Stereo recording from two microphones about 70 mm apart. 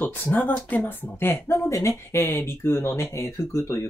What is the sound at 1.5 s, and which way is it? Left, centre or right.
Speech, left.